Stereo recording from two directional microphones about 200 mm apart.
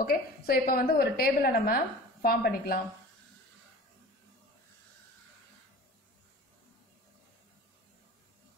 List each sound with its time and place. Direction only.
0.0 s a woman's voice: 45° left (ahead or behind)